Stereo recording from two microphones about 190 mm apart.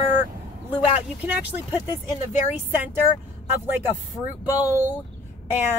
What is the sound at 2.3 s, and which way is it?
Speech, 35° left (ahead or behind).